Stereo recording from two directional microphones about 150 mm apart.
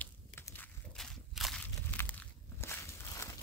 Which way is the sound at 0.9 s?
Centre (ahead or behind).